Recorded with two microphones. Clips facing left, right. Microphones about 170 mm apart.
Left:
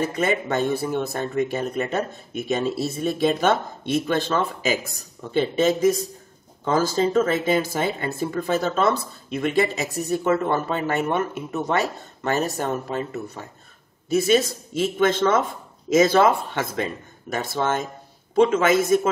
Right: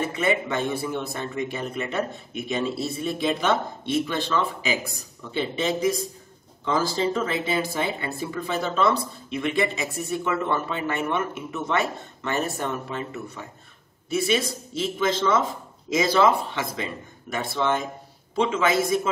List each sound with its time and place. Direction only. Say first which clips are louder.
0.0 s speech: left 2 dB; 40° left (ahead or behind)
5.3 s speech: left 6 dB; 45° left (ahead or behind)